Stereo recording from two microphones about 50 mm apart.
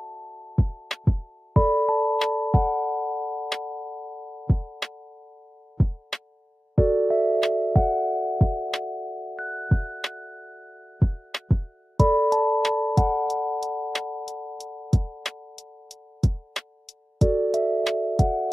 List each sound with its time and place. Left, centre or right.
0.0 s music: centre
0.6 s music: centre